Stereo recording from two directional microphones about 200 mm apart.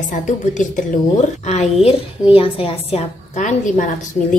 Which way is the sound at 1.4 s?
35° left (ahead or behind).